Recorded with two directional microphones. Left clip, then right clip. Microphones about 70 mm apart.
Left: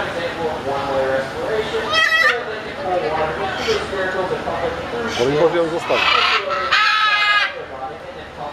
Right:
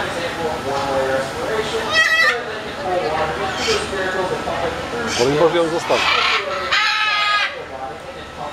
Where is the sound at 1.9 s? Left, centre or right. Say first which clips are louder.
Even; left.